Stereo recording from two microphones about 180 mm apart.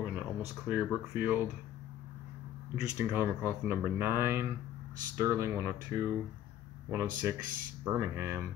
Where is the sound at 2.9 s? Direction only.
15° right (ahead or behind).